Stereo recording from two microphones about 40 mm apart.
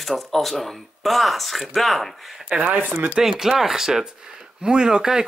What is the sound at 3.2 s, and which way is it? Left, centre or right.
Speech, centre.